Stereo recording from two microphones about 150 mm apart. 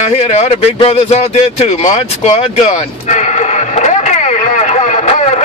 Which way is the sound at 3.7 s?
50° left (ahead or behind).